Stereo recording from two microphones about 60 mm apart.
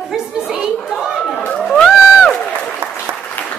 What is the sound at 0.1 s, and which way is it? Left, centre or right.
Chatter, centre.